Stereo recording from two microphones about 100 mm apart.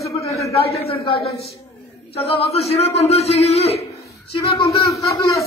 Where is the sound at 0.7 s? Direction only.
90° left.